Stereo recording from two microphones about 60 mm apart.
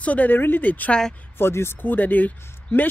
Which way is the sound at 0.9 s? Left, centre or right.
Centre.